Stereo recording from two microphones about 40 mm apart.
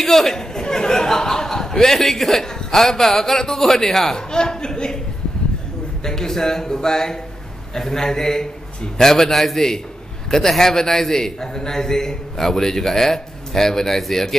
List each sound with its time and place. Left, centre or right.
0.0 s a sound: centre
2.4 s a man's voice: centre
6.0 s a man's voice: centre
9.1 s a man's voice: centre